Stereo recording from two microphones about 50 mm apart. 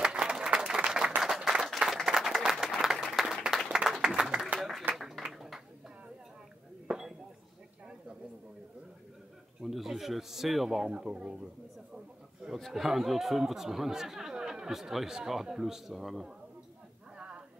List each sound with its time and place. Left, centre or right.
0.0 s applause: centre
4.6 s a sound: centre
6.9 s chink: centre
9.6 s a sound: centre
10.8 s speech: centre
12.5 s speech: centre